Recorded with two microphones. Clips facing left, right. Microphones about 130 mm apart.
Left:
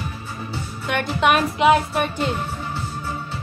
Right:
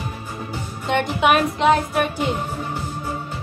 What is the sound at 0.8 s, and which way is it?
Music, 25° right (ahead or behind).